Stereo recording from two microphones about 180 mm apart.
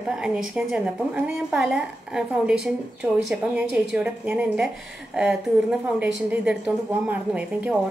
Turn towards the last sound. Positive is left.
turn(degrees=-5)  # may be behind; listen again after turning